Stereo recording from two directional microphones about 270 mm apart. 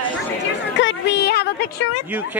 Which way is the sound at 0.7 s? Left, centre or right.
Left.